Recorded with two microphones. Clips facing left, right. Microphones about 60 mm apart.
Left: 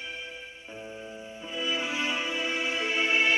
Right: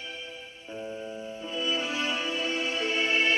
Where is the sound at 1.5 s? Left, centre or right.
Left.